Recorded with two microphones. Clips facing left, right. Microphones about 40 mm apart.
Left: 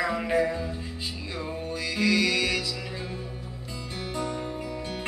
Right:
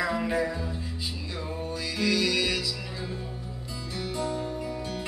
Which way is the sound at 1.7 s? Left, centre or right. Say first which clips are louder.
Left 3 dB; left.